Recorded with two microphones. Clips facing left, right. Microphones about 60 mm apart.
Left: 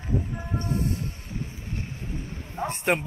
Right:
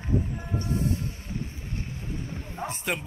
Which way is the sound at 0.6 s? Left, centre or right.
Left.